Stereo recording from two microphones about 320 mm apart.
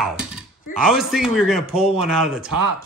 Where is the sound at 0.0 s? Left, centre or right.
Centre.